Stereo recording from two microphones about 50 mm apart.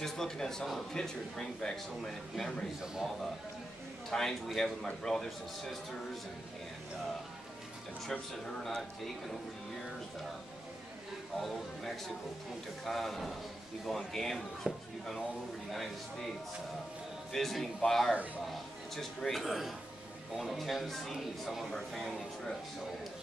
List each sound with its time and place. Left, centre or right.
0.0 s a man's voice: centre
2.8 s a man's voice: centre
4.1 s a man's voice: centre
8.1 s a man's voice: centre
11.3 s speech: centre
17.3 s a man's voice: centre